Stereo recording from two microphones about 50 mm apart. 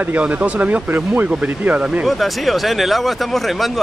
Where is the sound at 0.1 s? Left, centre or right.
Right.